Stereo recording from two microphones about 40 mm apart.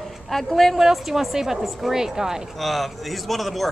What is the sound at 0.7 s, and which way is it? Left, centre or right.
Speech, centre.